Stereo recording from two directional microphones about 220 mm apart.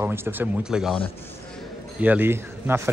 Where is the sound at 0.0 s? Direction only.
10° right (ahead or behind).